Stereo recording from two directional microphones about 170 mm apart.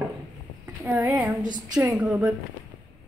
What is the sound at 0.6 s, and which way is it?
Speech, 10° right (ahead or behind).